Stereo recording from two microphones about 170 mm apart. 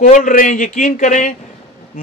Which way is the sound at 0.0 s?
55° left (ahead or behind).